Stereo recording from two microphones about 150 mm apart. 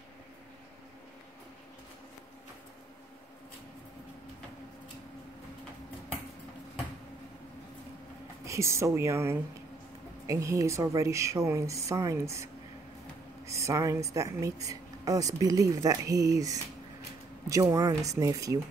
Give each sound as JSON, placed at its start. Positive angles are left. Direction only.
{"t": 8.5, "sound": "speech", "side_deg": -20}
{"t": 13.5, "sound": "speech", "side_deg": -20}